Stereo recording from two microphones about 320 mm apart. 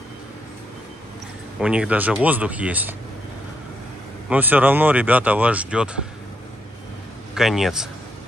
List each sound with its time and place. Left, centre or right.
1.6 s speech: centre
4.3 s speech: centre
7.3 s speech: centre